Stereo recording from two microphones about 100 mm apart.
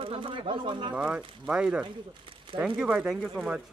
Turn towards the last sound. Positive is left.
turn(degrees=-10)  # may be behind; listen again after turning